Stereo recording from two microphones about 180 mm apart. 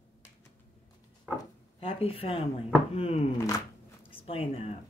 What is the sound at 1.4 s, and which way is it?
Speech, 30° left (ahead or behind).